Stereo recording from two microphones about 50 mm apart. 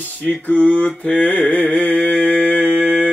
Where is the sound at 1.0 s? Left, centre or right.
Left.